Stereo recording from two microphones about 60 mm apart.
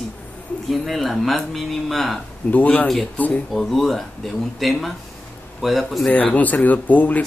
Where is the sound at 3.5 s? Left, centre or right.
Centre.